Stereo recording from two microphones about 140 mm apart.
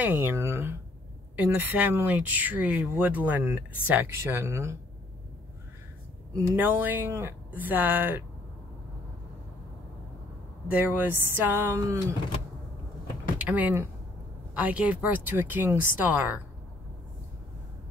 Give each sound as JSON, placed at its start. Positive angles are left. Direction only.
{"t": 0.0, "sound": "speech", "side_deg": -15}
{"t": 6.3, "sound": "speech", "side_deg": -15}
{"t": 10.7, "sound": "speech", "side_deg": -10}
{"t": 13.4, "sound": "speech", "side_deg": -10}